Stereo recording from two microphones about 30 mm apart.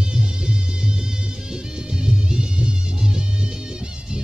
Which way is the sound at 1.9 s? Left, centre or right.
Right.